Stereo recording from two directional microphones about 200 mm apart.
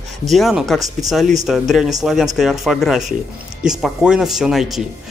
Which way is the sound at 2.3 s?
Centre (ahead or behind).